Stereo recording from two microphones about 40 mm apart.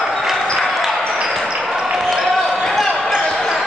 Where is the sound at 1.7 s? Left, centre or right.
Centre.